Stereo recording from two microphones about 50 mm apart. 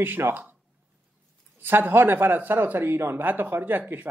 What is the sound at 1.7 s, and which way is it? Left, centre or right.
A man's voice, right.